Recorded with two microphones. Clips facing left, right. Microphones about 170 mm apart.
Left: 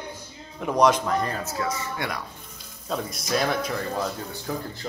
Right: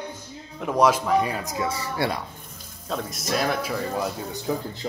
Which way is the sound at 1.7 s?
30° right (ahead or behind).